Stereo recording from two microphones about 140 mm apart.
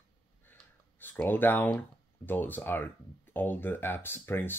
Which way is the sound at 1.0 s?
15° left (ahead or behind).